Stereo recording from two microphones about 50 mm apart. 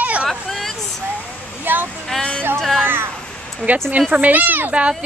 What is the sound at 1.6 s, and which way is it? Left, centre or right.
Speech, right.